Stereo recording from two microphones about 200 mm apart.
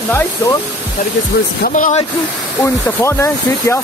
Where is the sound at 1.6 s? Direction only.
40° left (ahead or behind).